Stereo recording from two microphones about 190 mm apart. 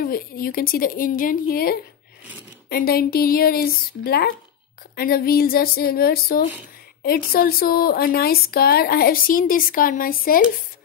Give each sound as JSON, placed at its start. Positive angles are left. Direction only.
{"t": 0.0, "sound": "speech", "side_deg": 50}